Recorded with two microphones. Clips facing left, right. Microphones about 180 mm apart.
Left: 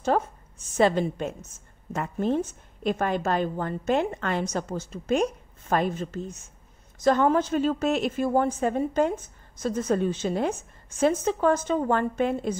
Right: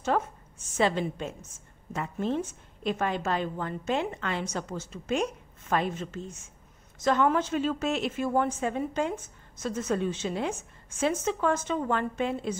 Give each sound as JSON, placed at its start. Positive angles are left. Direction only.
{"t": 0.1, "sound": "a woman's voice", "side_deg": 35}